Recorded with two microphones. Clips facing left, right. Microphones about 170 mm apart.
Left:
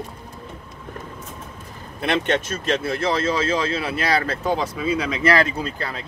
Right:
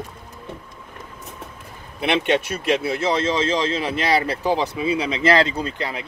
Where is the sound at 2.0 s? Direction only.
15° right (ahead or behind).